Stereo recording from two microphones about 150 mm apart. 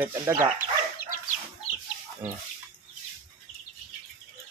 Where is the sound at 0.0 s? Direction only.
20° right (ahead or behind).